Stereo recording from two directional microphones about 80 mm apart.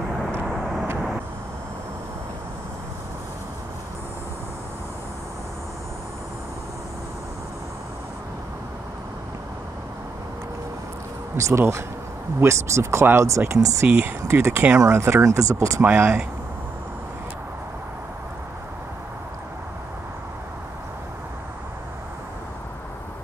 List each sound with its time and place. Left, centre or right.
0.5 s vehicle: centre
11.3 s speech: right
15.2 s speech: right
15.8 s speech: right